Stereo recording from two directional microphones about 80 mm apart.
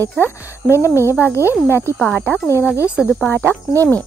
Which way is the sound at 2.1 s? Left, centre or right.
Centre.